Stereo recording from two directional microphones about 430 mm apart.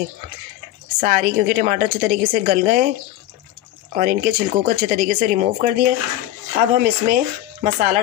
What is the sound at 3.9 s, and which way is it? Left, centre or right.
Speech, centre.